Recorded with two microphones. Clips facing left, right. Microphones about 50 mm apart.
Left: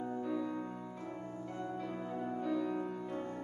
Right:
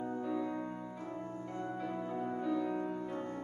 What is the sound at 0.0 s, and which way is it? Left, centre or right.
Music, centre.